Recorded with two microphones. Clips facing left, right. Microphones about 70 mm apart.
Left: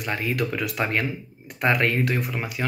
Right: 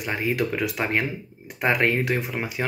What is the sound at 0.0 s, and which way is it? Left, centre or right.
Speech, centre.